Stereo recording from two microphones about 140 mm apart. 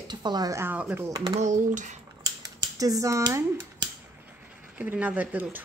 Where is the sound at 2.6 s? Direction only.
25° right (ahead or behind).